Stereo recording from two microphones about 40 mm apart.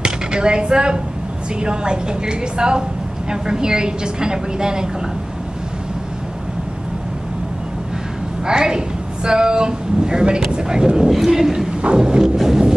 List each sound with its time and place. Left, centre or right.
0.0 s a woman's voice: right
8.5 s a woman's voice: centre
11.1 s a man's voice: centre
11.8 s a woman's voice: right
12.4 s a sound: centre